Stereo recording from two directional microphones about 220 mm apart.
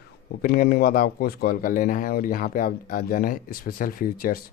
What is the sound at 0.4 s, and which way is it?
Speech, 45° left (ahead or behind).